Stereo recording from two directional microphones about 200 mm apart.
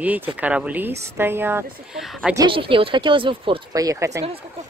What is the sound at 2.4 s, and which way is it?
Speech, 25° right (ahead or behind).